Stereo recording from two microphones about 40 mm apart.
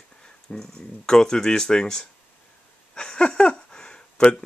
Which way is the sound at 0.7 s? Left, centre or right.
Centre.